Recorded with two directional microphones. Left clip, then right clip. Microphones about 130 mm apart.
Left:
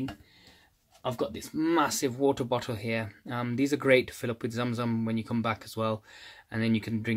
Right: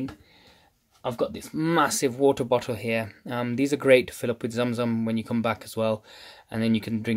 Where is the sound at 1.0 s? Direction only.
35° right (ahead or behind).